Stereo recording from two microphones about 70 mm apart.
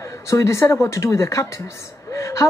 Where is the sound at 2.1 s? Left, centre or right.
Left.